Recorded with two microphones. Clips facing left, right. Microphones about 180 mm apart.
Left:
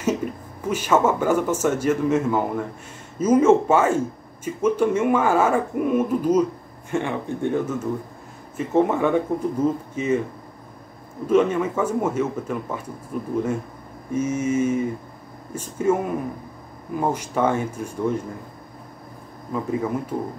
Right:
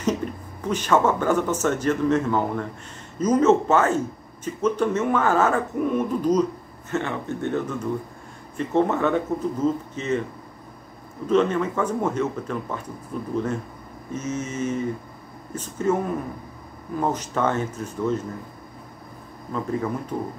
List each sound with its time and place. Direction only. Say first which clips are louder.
0.0 s speech: left 1 dB; 10° left (ahead or behind)
11.2 s speech: left 2 dB; 10° left (ahead or behind)
19.5 s speech: left 2 dB; 10° left (ahead or behind)